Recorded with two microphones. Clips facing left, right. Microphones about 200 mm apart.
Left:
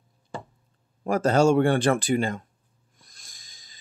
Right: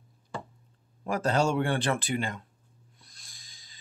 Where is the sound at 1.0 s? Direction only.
45° left (ahead or behind).